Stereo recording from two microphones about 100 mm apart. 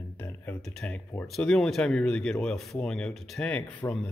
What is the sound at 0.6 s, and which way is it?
Speech, 10° left (ahead or behind).